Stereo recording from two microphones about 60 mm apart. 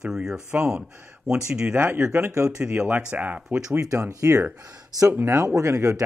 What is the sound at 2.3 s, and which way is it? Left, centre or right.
Speech, right.